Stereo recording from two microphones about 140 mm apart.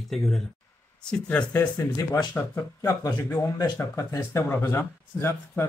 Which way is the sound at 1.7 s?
25° left (ahead or behind).